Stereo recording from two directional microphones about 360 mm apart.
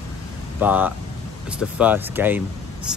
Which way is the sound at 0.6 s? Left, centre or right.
Centre.